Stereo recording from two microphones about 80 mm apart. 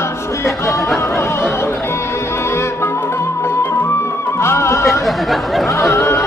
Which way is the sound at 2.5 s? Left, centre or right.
Left.